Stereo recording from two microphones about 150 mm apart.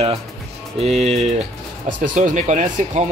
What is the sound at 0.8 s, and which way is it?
Speech, 45° right (ahead or behind).